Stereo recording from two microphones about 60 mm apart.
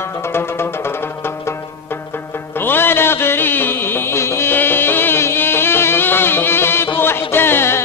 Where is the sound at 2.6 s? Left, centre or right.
Left.